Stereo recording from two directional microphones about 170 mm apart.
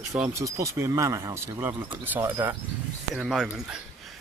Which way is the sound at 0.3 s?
20° right (ahead or behind).